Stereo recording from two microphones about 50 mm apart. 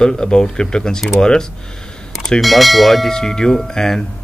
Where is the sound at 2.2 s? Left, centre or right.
Centre.